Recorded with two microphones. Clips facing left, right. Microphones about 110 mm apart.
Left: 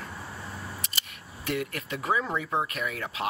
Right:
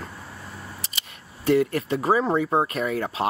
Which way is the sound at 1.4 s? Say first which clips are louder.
Right 11 dB; 30° right (ahead or behind).